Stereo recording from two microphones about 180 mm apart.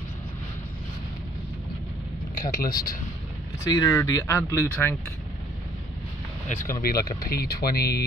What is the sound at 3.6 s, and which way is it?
Speech, 20° left (ahead or behind).